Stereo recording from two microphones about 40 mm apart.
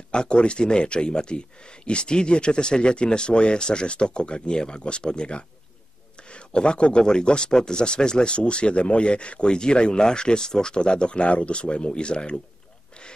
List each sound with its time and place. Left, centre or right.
0.1 s speech: left